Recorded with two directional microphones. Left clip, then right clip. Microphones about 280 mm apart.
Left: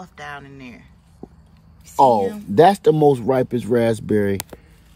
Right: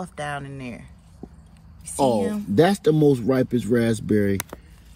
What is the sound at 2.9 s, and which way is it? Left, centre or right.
Speech, left.